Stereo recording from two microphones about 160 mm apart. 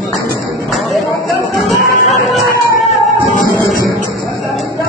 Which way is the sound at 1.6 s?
Centre (ahead or behind).